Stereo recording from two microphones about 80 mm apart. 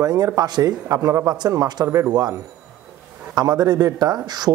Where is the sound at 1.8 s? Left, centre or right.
Right.